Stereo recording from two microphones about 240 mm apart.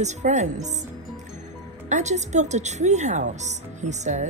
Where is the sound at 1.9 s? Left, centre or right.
Right.